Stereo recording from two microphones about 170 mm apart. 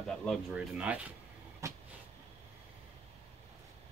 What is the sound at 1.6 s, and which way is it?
Vehicle, 20° right (ahead or behind).